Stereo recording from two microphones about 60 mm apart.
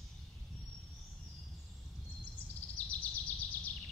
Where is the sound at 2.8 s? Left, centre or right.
Left.